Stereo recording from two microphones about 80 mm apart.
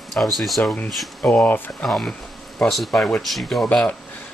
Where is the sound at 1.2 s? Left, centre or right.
Centre.